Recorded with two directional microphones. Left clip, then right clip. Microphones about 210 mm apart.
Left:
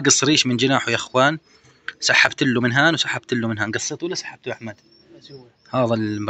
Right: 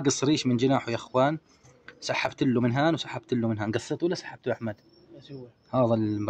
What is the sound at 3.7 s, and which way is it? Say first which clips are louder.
Speech: left 3 dB; 20° right (ahead or behind).